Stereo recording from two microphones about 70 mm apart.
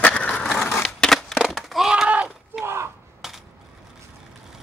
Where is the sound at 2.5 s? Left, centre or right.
Right.